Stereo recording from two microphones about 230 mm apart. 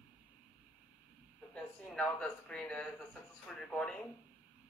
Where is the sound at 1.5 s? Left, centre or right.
Centre.